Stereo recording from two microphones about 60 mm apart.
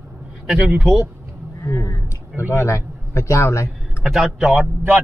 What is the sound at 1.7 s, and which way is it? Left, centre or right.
Speech, left.